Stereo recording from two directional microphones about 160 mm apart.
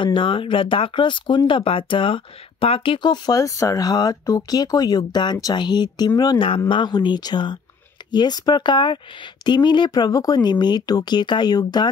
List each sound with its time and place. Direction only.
0.0 s speech: 30° left (ahead or behind)